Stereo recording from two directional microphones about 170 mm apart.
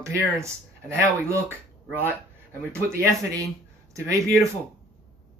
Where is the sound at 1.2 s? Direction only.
15° right (ahead or behind).